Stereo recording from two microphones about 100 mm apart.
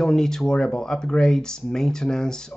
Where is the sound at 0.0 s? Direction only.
5° left (ahead or behind).